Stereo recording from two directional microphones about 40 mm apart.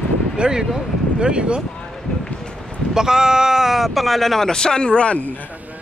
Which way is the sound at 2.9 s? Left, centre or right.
Centre.